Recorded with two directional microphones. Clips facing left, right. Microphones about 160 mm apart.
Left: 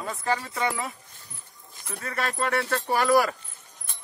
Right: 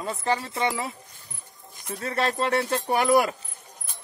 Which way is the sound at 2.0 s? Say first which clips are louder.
Right 3 dB; 25° right (ahead or behind).